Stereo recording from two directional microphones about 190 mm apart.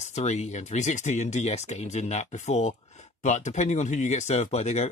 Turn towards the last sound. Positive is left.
turn(degrees=35)  # may be behind; listen again after turning